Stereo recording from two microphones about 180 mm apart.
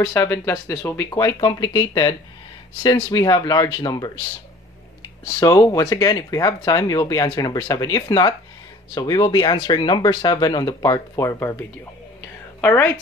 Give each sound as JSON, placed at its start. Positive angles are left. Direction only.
{"t": 0.0, "sound": "speech", "side_deg": 15}
{"t": 5.4, "sound": "speech", "side_deg": 20}
{"t": 12.5, "sound": "a sound", "side_deg": 10}